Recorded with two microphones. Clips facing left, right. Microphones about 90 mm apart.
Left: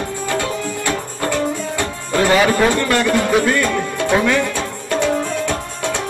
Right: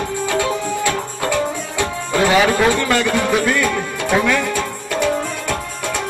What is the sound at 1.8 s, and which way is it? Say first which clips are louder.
Music: right 2 dB; 20° right (ahead or behind).